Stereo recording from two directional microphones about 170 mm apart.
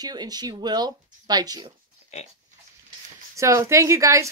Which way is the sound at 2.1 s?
40° left (ahead or behind).